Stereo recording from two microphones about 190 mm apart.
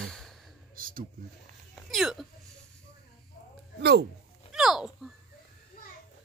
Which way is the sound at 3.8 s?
60° right (ahead or behind).